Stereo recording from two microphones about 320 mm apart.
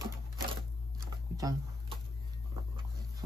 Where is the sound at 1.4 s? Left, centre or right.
Centre.